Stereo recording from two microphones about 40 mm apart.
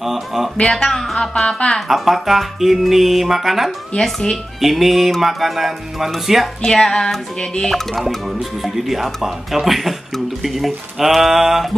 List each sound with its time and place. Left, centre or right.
0.0 s speech: centre
0.6 s speech: centre
1.9 s music: centre
4.0 s speech: centre
4.6 s music: centre
6.6 s music: centre
7.6 s speech: centre
8.3 s music: centre